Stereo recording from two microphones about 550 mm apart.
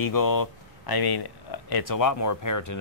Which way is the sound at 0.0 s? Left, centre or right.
Left.